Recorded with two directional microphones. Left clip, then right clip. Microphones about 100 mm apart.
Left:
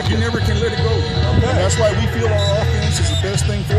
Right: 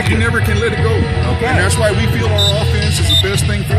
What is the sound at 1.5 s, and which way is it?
Speech, 10° left (ahead or behind).